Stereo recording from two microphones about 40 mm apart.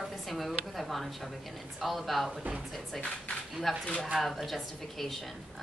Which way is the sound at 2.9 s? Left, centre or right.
Left.